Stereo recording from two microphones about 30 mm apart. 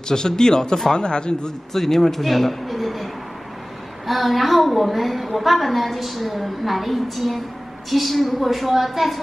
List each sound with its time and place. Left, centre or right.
0.1 s speech: left
1.7 s a man's voice: centre
4.1 s a woman's voice: centre